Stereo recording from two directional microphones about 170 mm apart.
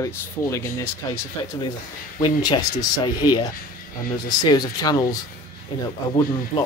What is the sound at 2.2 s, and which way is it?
Speech, 30° left (ahead or behind).